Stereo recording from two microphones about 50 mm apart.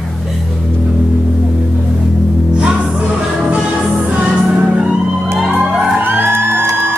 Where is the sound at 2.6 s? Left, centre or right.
Centre.